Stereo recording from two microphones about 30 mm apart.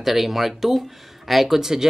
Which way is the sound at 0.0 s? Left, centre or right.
Centre.